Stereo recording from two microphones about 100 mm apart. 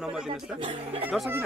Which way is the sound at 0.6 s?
55° right (ahead or behind).